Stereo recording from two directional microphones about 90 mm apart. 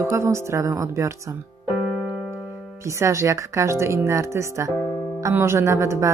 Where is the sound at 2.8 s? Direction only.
35° right (ahead or behind).